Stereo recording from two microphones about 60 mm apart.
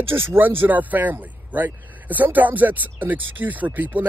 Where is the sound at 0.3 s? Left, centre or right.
Right.